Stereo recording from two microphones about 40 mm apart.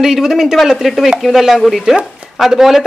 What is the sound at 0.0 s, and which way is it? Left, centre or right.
A woman's voice, centre.